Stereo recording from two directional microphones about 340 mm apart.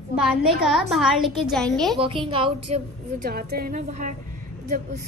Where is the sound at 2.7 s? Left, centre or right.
Right.